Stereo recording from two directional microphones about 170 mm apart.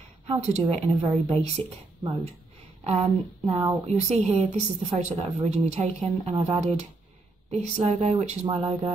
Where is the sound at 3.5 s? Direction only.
35° right (ahead or behind).